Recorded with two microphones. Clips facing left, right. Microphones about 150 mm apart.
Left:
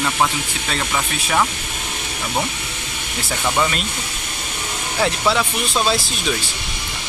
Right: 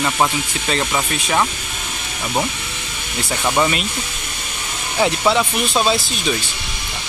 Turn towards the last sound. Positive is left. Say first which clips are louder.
# right 2 dB
turn(degrees=-5)  # may be behind; listen again after turning